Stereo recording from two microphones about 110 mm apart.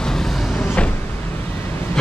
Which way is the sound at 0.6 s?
15° left (ahead or behind).